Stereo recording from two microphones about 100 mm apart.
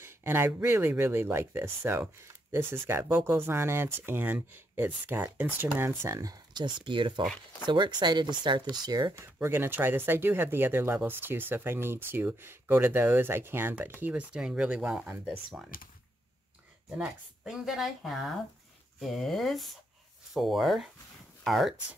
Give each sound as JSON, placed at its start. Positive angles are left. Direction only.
{"t": 0.0, "sound": "speech", "side_deg": -25}
{"t": 9.2, "sound": "speech", "side_deg": -25}
{"t": 14.3, "sound": "speech", "side_deg": -10}
{"t": 16.9, "sound": "speech", "side_deg": -5}